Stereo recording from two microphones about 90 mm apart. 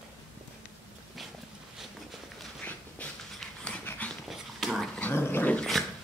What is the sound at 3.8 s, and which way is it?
Dog, 20° left (ahead or behind).